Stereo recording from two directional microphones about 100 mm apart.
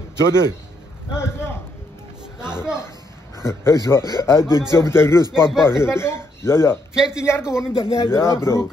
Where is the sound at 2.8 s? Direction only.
25° left (ahead or behind).